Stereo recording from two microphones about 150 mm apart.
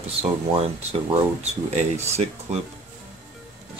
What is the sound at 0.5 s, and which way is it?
Speech, 45° right (ahead or behind).